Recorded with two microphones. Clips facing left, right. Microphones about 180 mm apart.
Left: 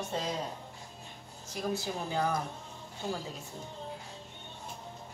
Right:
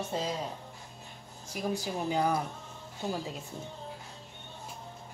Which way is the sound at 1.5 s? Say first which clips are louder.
Right 1 dB; 10° right (ahead or behind).